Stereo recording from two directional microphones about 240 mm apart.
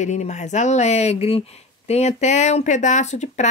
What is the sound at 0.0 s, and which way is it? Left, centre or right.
Speech, left.